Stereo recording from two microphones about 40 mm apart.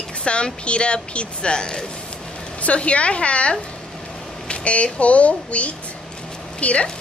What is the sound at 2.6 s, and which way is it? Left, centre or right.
Speech, left.